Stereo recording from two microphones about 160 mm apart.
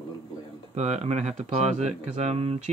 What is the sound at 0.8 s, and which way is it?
Speech, 45° right (ahead or behind).